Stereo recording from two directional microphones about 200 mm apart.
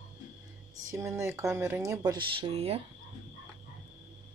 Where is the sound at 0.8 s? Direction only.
15° right (ahead or behind).